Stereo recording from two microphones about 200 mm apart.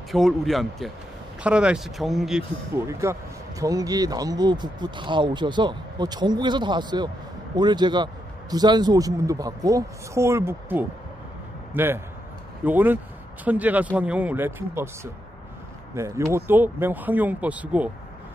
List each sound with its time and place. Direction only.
0.1 s speech: centre (ahead or behind)
2.7 s a man's voice: 15° right (ahead or behind)
16.3 s a man's voice: 10° right (ahead or behind)